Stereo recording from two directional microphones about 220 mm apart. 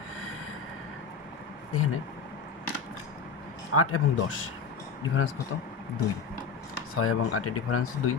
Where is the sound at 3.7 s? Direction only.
85° left.